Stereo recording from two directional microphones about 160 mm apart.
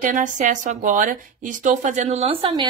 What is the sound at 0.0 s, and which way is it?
A woman's voice, 50° right (ahead or behind).